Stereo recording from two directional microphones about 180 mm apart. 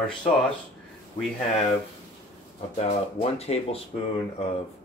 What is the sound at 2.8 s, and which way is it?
Speech, 35° left (ahead or behind).